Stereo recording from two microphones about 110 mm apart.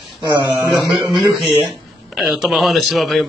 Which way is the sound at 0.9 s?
45° right (ahead or behind).